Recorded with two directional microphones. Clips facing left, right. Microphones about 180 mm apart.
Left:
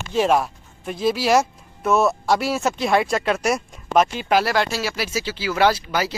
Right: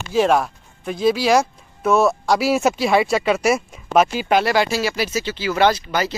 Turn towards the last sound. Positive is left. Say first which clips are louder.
# right 1 dB
turn(degrees=5)  # may be behind; listen again after turning